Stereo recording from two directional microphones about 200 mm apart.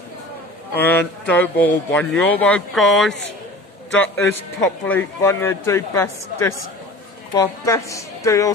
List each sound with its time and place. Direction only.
0.7 s a man's voice: 10° left (ahead or behind)